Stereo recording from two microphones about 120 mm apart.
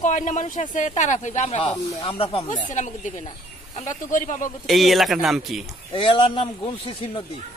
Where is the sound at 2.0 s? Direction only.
50° left (ahead or behind).